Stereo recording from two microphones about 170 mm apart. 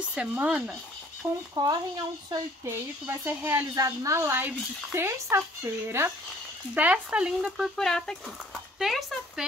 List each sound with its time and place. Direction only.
0.1 s a woman's voice: 5° right (ahead or behind)
1.5 s a woman's voice: 25° right (ahead or behind); by 9.5 s centre (ahead or behind)